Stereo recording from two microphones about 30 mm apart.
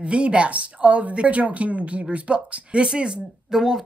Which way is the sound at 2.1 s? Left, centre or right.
Right.